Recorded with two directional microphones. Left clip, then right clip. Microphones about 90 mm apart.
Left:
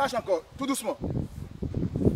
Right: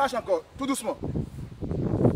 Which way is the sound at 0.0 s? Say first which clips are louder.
Right 1 dB; 60° left (ahead or behind).